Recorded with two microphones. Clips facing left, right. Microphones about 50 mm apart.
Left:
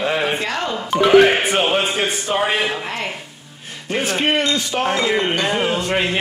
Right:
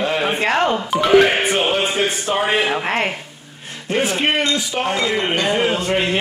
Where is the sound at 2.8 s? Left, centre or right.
Right.